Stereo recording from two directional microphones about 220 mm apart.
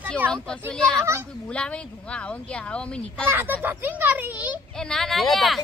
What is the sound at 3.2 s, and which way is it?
Speech, 10° right (ahead or behind).